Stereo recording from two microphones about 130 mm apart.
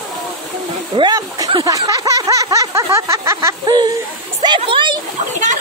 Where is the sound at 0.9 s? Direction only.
30° right (ahead or behind).